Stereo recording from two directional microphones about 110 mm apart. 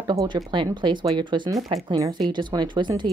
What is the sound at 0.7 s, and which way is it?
A woman's voice, 45° right (ahead or behind).